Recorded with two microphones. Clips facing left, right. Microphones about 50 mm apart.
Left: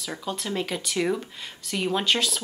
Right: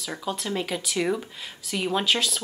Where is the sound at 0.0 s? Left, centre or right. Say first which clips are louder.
Right 1 dB; centre.